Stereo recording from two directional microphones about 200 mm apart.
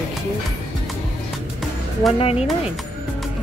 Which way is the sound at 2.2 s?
30° left (ahead or behind).